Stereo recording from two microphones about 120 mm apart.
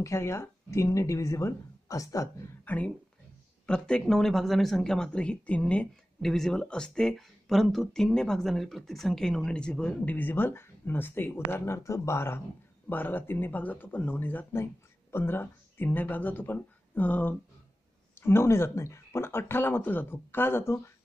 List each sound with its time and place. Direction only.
0.0 s speech: 25° left (ahead or behind)
2.6 s speech: 15° left (ahead or behind)